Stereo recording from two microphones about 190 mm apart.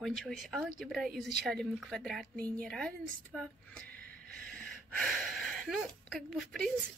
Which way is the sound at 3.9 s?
50° right (ahead or behind).